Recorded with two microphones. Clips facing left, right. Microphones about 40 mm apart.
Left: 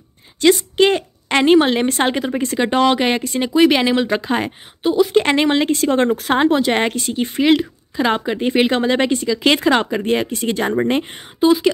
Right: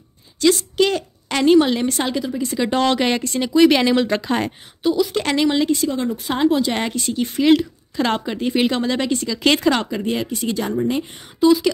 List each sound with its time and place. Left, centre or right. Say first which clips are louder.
0.4 s a woman's voice: left 3 dB; left
2.6 s speech: left 3 dB; left
4.8 s a woman's voice: left 4 dB; left
6.3 s a woman's voice: left 2 dB; left
7.2 s speech: even; left
8.3 s a woman's voice: left 3 dB; left
9.3 s speech: left 1 dB; centre
9.8 s speech: left 4 dB; left
10.0 s speech: left 4 dB; left
11.3 s speech: left 1 dB; left